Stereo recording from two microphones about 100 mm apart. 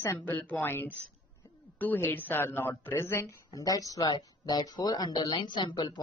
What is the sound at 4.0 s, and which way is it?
A woman's voice, 50° left (ahead or behind).